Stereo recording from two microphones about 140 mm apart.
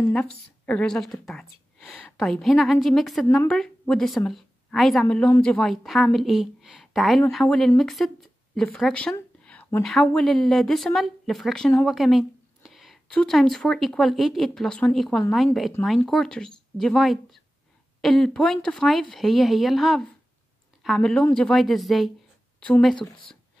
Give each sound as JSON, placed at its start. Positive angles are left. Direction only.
{"t": 0.1, "sound": "a woman's voice", "side_deg": 10}
{"t": 9.4, "sound": "a sound", "side_deg": 10}
{"t": 9.8, "sound": "speech", "side_deg": 5}